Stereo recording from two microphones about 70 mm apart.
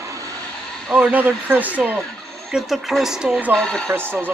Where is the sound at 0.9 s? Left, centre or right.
Right.